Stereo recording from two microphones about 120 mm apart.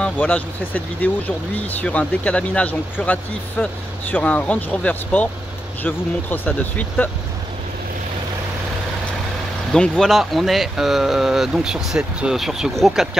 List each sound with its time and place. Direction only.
0.0 s speech: 10° left (ahead or behind)
9.7 s speech: 5° left (ahead or behind)